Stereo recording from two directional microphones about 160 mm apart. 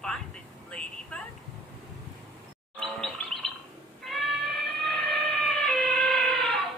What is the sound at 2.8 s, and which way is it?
Gargling, 5° left (ahead or behind).